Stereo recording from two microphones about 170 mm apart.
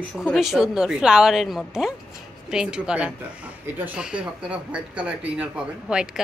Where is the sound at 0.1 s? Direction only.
Centre (ahead or behind).